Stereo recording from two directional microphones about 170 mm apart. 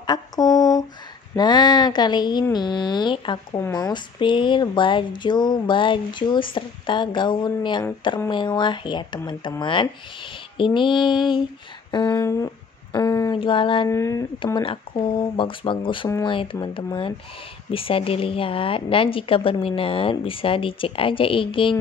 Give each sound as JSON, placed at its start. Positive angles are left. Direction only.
{"t": 0.0, "sound": "a sound", "side_deg": 25}
{"t": 1.3, "sound": "speech", "side_deg": 25}
{"t": 12.9, "sound": "a sound", "side_deg": 20}
{"t": 13.4, "sound": "speech", "side_deg": 30}
{"t": 13.8, "sound": "speech", "side_deg": 15}
{"t": 14.4, "sound": "speech", "side_deg": 30}